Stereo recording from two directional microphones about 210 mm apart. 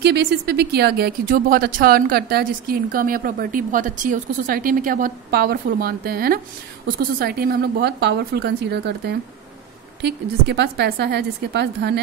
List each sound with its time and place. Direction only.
0.0 s speech: 55° right (ahead or behind)